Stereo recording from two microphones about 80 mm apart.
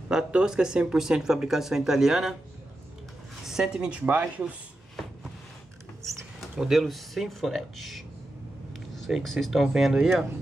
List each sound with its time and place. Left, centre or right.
0.1 s speech: centre
3.4 s a woman's voice: centre
6.4 s speech: centre